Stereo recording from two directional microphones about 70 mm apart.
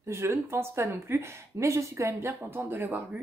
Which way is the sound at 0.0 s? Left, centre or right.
Right.